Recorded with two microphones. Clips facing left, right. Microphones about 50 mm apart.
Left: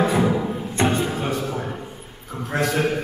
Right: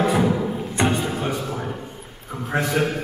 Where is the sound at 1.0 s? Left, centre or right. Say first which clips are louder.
Left 1 dB; centre.